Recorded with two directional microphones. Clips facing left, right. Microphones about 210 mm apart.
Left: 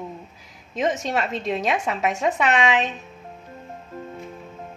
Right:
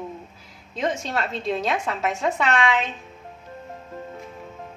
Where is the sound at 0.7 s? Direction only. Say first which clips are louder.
Left 3 dB; 15° left (ahead or behind).